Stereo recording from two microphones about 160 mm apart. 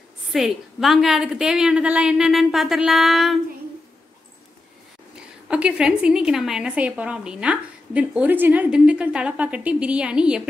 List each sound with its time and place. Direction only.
0.3 s a woman's voice: centre (ahead or behind)
5.5 s a woman's voice: 5° right (ahead or behind)